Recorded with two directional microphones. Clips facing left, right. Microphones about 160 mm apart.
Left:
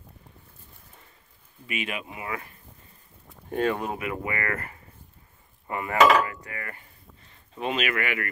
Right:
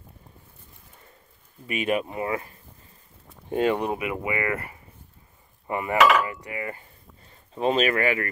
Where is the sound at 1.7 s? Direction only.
40° right (ahead or behind).